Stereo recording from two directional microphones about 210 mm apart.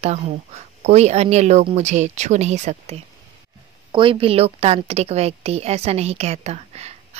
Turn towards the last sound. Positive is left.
turn(degrees=-30)  # may be behind; listen again after turning